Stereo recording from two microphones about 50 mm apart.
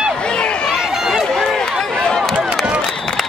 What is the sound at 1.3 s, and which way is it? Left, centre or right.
Run, centre.